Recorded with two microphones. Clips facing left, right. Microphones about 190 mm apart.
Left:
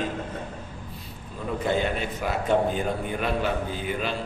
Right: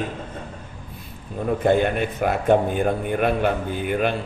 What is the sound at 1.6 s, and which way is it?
A man's voice, 55° right (ahead or behind).